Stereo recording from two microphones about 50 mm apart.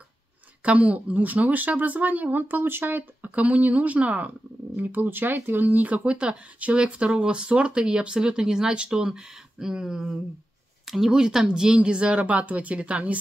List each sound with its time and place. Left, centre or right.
0.7 s speech: right